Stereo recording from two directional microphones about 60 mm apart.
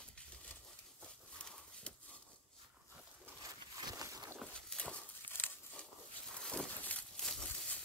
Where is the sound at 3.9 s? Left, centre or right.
Right.